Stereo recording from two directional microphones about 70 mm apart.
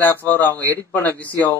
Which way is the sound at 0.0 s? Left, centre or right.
Left.